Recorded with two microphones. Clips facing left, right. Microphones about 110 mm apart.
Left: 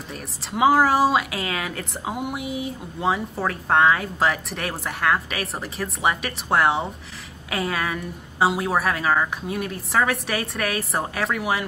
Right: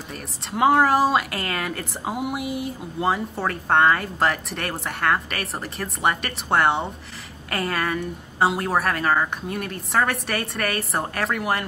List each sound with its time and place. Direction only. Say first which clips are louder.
0.1 s speech: even; centre (ahead or behind)